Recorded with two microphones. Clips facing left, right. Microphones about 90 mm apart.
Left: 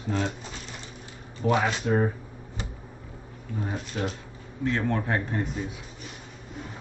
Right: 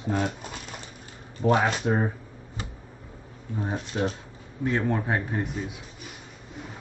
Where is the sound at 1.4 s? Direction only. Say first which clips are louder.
Right 2 dB; 40° right (ahead or behind).